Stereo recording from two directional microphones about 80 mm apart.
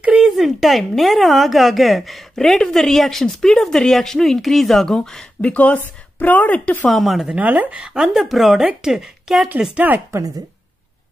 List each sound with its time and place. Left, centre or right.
0.0 s a sound: centre
0.3 s speech: centre
6.9 s speech: centre
7.3 s speech: centre
9.6 s speech: centre